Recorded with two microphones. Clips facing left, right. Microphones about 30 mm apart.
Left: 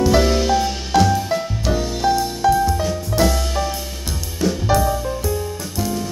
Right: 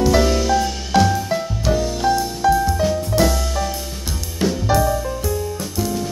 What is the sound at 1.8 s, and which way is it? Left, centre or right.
Music, centre.